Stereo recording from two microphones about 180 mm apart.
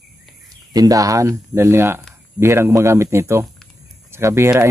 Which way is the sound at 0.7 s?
20° right (ahead or behind).